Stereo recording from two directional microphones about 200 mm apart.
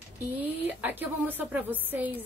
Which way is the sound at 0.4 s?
10° right (ahead or behind).